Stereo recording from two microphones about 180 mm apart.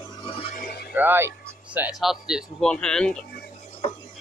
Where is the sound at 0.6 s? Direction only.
60° left (ahead or behind).